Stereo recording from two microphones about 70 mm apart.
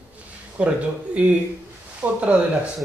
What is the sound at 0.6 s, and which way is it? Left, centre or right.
Speech, centre.